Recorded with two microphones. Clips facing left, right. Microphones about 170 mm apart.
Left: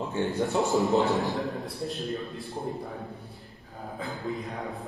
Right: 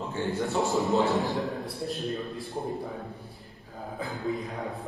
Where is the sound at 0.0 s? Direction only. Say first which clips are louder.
Left 2 dB; 20° left (ahead or behind).